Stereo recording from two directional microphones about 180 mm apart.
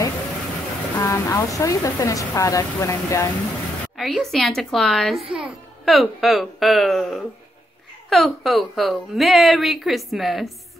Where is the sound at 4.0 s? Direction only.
Centre (ahead or behind).